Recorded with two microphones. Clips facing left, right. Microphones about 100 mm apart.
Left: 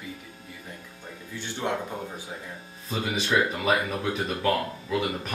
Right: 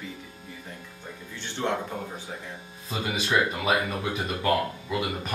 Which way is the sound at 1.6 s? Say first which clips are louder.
Right 1 dB; 10° left (ahead or behind).